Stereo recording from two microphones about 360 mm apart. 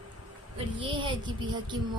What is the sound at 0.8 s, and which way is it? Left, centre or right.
A woman's voice, centre.